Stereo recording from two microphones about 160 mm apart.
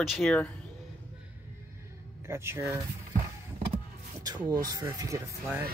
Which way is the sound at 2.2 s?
15° right (ahead or behind).